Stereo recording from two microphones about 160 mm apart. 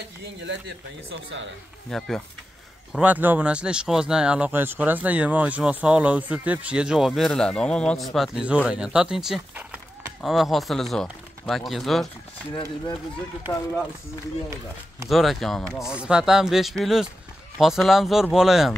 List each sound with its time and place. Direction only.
0.4 s speech: 90° right
1.9 s speech: centre (ahead or behind)
13.5 s speech: 20° left (ahead or behind)
15.0 s speech: centre (ahead or behind)